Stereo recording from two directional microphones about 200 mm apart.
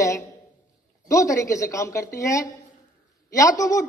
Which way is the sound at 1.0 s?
15° left (ahead or behind).